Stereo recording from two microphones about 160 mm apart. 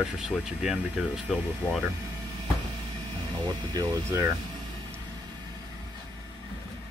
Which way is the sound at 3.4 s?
25° right (ahead or behind).